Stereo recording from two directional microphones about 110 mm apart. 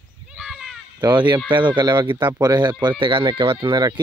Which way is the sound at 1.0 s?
40° right (ahead or behind).